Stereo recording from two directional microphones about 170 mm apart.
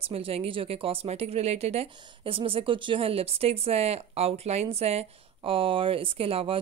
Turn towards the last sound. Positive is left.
turn(degrees=-35)  # may be behind; listen again after turning